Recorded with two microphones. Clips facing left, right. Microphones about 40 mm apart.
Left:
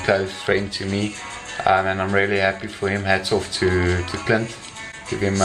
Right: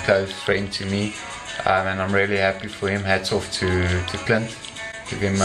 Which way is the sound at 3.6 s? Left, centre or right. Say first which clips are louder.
Left 4 dB; right.